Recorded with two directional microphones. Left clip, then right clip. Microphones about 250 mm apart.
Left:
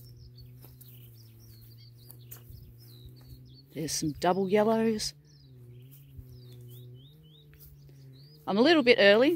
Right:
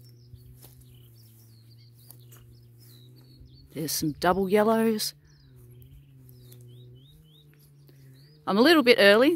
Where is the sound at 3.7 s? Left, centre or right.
Centre.